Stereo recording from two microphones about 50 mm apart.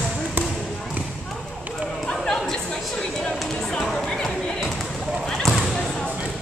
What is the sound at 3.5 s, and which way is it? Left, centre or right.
Music, centre.